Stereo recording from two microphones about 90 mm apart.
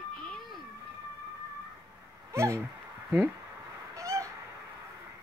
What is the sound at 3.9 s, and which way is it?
Owl, 35° right (ahead or behind).